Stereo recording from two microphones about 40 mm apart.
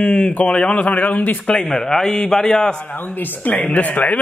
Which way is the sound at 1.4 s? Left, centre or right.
Centre.